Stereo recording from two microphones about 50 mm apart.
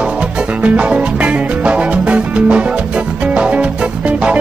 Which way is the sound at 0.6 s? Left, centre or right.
Right.